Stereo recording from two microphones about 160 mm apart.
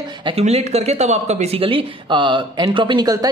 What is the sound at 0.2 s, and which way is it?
Speech, 40° right (ahead or behind).